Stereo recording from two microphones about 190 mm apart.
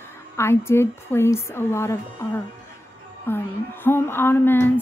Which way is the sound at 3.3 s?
10° left (ahead or behind).